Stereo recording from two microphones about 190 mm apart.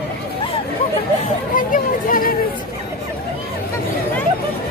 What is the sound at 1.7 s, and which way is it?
Chatter, 45° left (ahead or behind).